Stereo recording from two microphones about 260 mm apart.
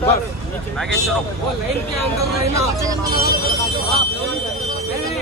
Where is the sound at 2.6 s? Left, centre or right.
Centre.